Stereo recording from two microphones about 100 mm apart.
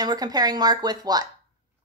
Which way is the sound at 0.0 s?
40° right (ahead or behind).